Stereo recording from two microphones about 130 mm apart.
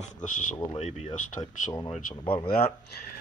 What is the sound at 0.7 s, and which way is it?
Speech, 60° left (ahead or behind).